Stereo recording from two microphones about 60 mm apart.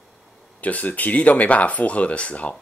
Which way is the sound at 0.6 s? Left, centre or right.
Left.